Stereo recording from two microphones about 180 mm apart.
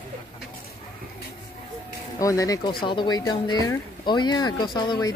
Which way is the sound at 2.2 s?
20° left (ahead or behind).